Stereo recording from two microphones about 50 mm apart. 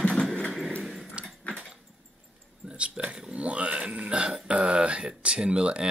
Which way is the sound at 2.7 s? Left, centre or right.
Right.